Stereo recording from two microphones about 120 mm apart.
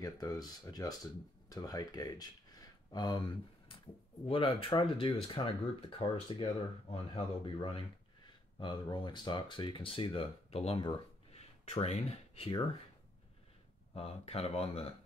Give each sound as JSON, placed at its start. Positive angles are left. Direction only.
{"t": 0.0, "sound": "speech", "side_deg": 35}
{"t": 6.4, "sound": "speech", "side_deg": 55}
{"t": 11.3, "sound": "a sound", "side_deg": 60}
{"t": 13.9, "sound": "speech", "side_deg": 55}